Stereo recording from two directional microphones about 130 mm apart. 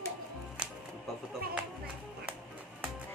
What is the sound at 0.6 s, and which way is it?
Music, 5° right (ahead or behind).